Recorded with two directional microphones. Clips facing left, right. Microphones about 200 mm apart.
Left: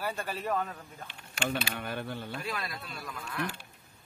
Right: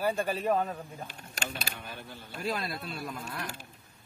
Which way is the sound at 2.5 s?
30° right (ahead or behind).